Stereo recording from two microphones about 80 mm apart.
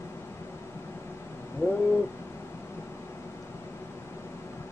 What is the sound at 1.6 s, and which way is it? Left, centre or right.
Owl, left.